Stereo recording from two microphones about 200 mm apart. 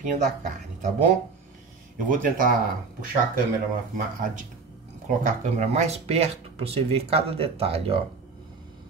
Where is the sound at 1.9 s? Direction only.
40° right (ahead or behind).